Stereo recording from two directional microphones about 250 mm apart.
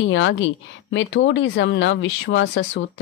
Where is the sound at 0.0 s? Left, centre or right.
Left.